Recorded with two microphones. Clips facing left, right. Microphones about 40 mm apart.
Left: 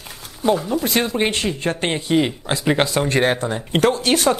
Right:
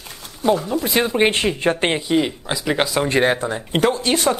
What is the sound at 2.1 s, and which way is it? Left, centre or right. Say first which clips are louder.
Speech: left 1 dB; centre.